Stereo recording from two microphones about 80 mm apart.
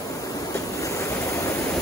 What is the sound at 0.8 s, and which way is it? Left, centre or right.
Waves, left.